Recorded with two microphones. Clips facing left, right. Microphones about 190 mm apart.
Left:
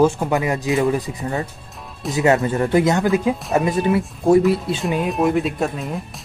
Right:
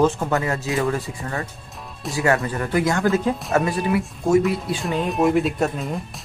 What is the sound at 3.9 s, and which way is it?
Speech, 35° left (ahead or behind).